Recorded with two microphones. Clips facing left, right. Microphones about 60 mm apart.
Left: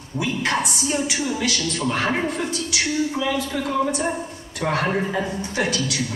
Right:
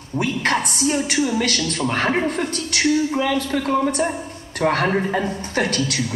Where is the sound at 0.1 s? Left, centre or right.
Right.